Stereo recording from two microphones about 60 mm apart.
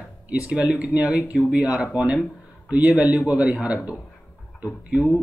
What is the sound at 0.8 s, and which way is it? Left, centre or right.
Speech, centre.